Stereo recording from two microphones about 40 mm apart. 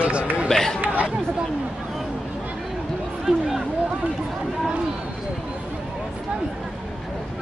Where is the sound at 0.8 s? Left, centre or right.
Right.